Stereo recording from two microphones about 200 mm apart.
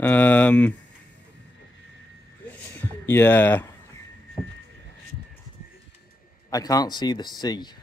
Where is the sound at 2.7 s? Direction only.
10° left (ahead or behind).